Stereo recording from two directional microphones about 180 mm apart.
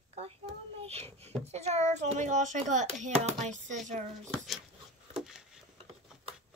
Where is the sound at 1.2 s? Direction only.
40° right (ahead or behind).